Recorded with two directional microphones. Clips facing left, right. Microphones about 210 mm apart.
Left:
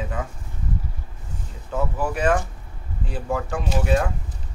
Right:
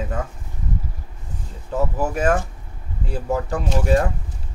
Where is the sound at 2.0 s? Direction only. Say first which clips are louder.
Even; 45° right (ahead or behind).